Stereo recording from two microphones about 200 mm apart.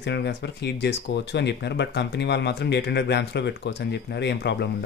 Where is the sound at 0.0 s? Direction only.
60° left (ahead or behind).